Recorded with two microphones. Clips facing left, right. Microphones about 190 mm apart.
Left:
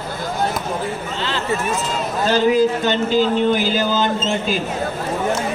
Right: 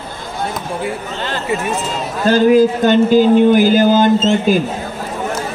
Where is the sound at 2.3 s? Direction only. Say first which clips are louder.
Right 6 dB; 50° right (ahead or behind).